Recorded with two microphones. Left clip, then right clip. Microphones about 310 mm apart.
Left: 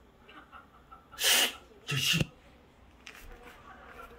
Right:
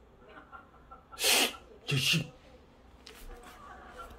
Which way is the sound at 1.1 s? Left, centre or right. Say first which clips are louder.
Left 1 dB; right.